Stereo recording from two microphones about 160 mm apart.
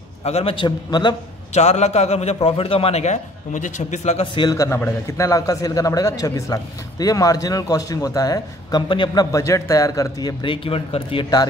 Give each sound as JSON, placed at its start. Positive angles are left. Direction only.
{"t": 0.2, "sound": "a man's voice", "side_deg": 40}
{"t": 1.5, "sound": "a man's voice", "side_deg": 45}
{"t": 4.4, "sound": "a man's voice", "side_deg": 20}